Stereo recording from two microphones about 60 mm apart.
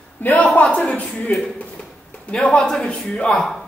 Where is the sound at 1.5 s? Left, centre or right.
Left.